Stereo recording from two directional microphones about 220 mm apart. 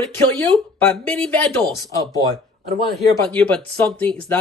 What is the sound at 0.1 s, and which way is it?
Speech, 5° left (ahead or behind).